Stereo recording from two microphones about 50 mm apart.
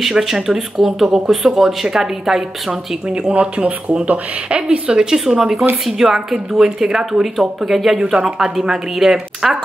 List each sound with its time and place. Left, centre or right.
0.0 s speech: centre
3.1 s speech: right; by 8.0 s centre
8.0 s speech: centre